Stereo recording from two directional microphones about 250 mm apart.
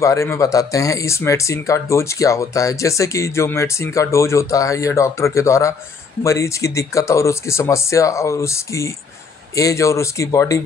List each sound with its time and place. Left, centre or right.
0.0 s speech: centre